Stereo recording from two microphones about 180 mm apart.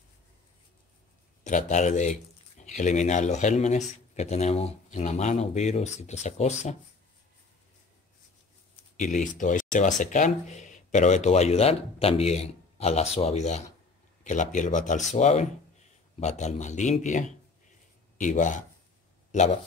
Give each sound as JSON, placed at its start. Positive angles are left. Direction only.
{"t": 1.4, "sound": "speech", "side_deg": 40}
{"t": 8.9, "sound": "speech", "side_deg": 40}